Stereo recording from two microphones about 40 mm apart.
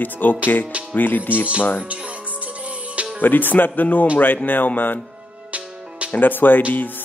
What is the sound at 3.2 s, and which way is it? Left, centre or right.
Speech, left.